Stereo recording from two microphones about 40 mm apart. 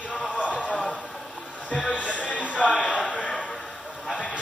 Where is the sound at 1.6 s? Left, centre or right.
Left.